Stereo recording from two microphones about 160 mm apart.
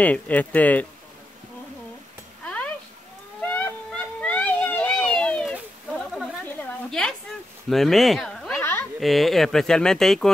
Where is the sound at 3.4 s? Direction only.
10° left (ahead or behind).